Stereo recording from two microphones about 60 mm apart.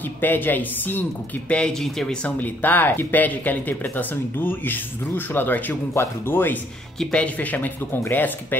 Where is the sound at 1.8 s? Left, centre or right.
Centre.